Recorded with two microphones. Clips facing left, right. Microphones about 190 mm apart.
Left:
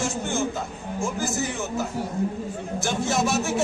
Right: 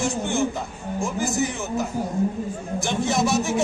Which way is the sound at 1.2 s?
15° right (ahead or behind).